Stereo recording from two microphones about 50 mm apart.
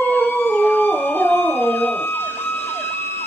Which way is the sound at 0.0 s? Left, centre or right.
Left.